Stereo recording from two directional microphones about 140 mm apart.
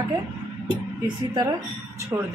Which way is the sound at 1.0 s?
30° right (ahead or behind).